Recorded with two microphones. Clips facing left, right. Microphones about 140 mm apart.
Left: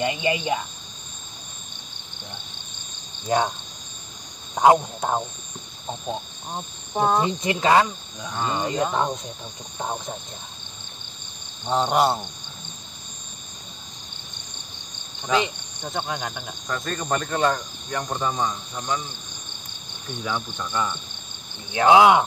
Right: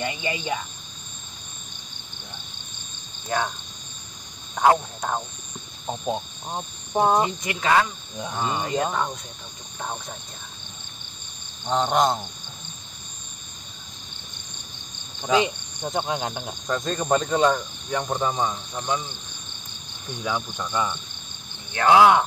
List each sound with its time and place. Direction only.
0.0 s speech: 20° left (ahead or behind)
3.3 s speech: 20° left (ahead or behind)
4.6 s speech: 20° left (ahead or behind)
6.0 s cricket: 15° right (ahead or behind)
7.4 s speech: 25° left (ahead or behind)
8.4 s speech: 15° right (ahead or behind)
8.6 s speech: 25° left (ahead or behind)
11.6 s cricket: 5° left (ahead or behind)
15.2 s speech: 15° right (ahead or behind)
20.2 s speech: 10° right (ahead or behind)
21.7 s cricket: 20° left (ahead or behind)